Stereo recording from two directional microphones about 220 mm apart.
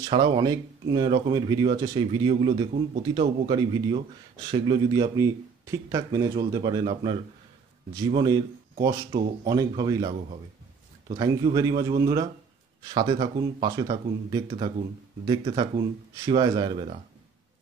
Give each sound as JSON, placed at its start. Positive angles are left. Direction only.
{"t": 0.0, "sound": "speech", "side_deg": -20}